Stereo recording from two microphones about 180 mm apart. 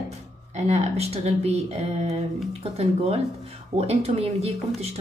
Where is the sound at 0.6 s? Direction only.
35° right (ahead or behind).